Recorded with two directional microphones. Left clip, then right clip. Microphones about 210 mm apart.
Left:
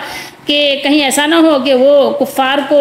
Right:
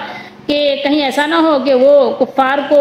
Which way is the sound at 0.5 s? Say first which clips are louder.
Left 2 dB; 5° left (ahead or behind).